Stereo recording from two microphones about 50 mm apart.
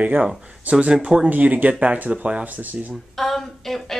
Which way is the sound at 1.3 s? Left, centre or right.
Right.